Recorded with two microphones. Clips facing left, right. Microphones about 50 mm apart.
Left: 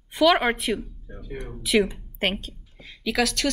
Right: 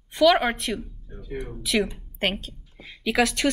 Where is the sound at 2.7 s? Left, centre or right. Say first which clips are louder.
Right 2 dB; centre.